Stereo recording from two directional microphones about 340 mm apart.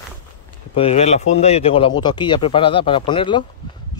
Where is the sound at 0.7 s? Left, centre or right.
Centre.